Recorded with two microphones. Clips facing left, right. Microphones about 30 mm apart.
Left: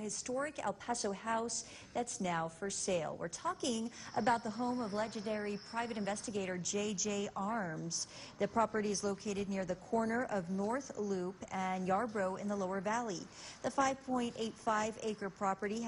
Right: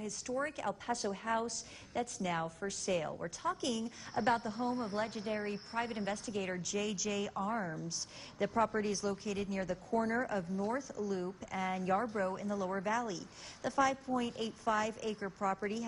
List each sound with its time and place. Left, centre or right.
0.5 s a woman's voice: right